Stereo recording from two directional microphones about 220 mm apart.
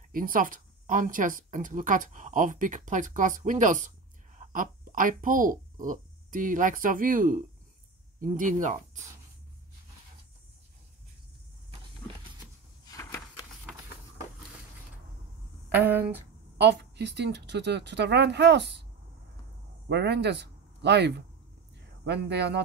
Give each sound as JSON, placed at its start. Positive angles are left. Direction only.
{"t": 0.1, "sound": "speech", "side_deg": -40}
{"t": 12.8, "sound": "a sound", "side_deg": 15}
{"t": 15.8, "sound": "speech", "side_deg": -10}
{"t": 16.5, "sound": "speech", "side_deg": -50}
{"t": 19.9, "sound": "speech", "side_deg": -50}